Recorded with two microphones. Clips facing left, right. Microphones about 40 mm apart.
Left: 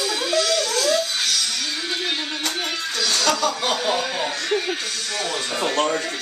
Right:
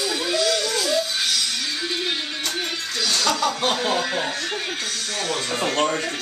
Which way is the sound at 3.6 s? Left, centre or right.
Right.